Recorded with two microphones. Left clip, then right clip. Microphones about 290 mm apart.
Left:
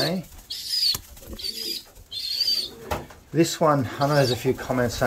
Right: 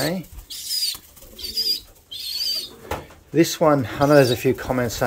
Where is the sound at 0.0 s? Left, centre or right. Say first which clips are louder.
Right 1 dB; centre.